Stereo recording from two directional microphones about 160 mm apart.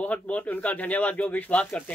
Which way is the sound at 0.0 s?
10° left (ahead or behind).